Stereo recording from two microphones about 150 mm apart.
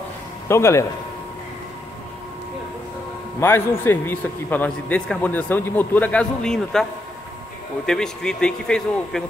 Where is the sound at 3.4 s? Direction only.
15° left (ahead or behind).